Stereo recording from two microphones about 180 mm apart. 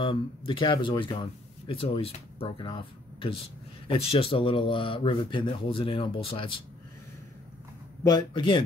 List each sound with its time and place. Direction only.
0.5 s speech: 25° left (ahead or behind)
8.1 s speech: 25° left (ahead or behind)